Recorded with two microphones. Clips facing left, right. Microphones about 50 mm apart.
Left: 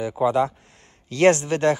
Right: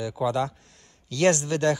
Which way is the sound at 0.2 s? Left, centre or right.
Left.